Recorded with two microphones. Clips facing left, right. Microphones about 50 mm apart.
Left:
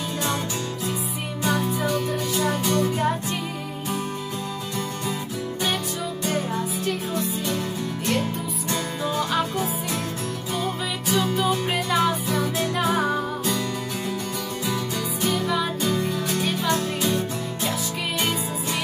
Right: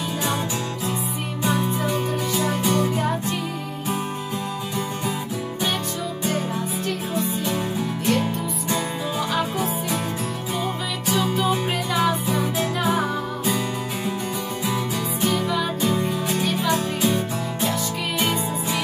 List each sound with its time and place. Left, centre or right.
1.4 s music: centre
2.6 s music: right
6.2 s music: centre
8.1 s music: centre
9.3 s music: centre
15.4 s music: centre